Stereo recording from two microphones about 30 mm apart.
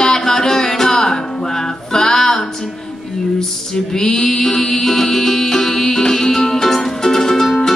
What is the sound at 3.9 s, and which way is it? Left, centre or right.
Music, centre.